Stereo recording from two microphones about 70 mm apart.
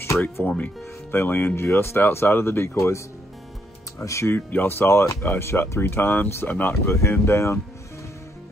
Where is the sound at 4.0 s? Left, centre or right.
Left.